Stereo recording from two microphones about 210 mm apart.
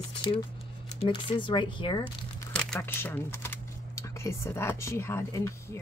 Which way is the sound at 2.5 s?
5° left (ahead or behind).